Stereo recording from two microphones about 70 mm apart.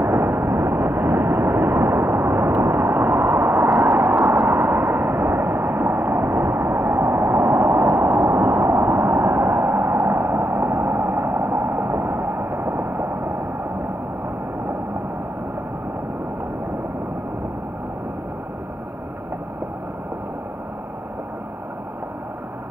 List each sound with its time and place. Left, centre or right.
0.0 s vehicle: right
3.8 s vehicle: right
4.3 s a sound: right